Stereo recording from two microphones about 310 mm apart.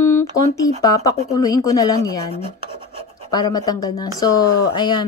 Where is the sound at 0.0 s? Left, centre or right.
Left.